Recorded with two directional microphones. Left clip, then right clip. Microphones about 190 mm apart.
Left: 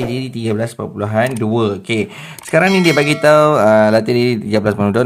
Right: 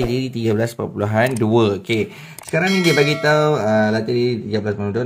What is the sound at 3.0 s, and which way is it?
Mantra, 25° left (ahead or behind).